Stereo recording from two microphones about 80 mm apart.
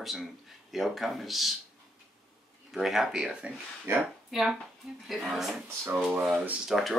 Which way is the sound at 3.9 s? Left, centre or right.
Right.